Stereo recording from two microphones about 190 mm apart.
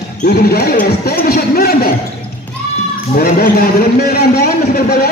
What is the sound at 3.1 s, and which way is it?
Speech, 50° left (ahead or behind).